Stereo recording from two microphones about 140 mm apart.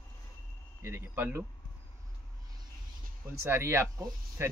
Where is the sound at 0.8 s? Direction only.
15° right (ahead or behind).